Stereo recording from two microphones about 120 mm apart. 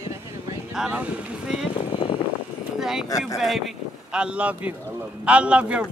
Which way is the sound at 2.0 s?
45° left (ahead or behind).